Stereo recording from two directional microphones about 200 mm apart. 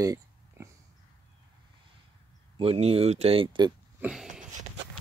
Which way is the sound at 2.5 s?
30° right (ahead or behind).